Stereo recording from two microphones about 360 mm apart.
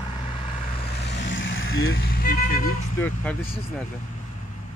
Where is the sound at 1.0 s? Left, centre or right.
Left.